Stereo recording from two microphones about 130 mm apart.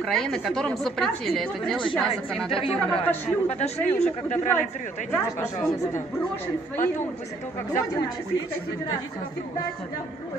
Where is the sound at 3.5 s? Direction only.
60° left (ahead or behind).